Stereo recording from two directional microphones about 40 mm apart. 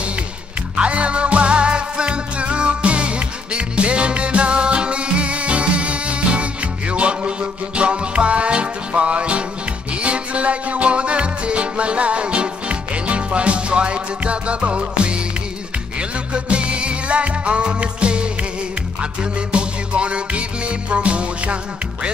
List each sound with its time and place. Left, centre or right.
0.7 s music: right
16.3 s music: right
19.5 s music: right